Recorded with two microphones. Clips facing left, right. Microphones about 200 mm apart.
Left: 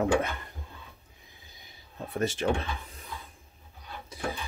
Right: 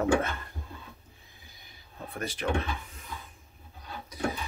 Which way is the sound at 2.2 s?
25° left (ahead or behind).